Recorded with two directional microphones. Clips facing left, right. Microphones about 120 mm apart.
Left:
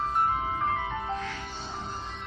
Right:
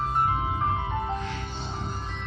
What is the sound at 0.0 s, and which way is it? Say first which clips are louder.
Ice cream truck: right 1 dB; 10° right (ahead or behind).